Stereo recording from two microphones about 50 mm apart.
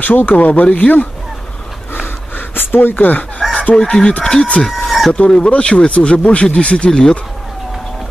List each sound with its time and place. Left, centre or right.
0.0 s speech: left
2.3 s a sound: left
3.5 s chicken: left
4.2 s speech: centre
4.8 s chicken: centre
5.1 s speech: left